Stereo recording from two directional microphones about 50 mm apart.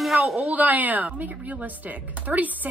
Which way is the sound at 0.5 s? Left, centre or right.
Right.